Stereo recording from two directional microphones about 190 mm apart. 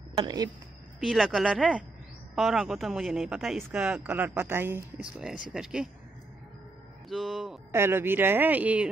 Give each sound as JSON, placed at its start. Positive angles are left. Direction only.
{"t": 0.1, "sound": "speech", "side_deg": -25}
{"t": 1.0, "sound": "speech", "side_deg": 0}
{"t": 7.1, "sound": "speech", "side_deg": 0}
{"t": 7.7, "sound": "speech", "side_deg": -10}